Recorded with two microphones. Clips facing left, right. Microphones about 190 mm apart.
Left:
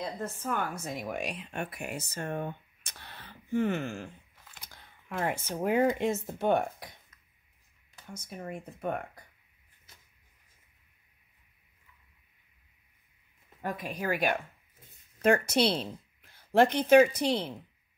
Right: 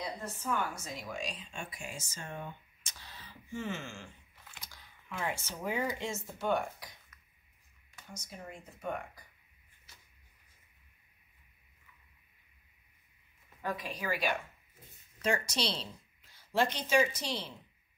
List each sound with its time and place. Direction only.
0.2 s speech: 55° left (ahead or behind)
8.2 s speech: 60° left (ahead or behind)
13.6 s a woman's voice: 50° left (ahead or behind)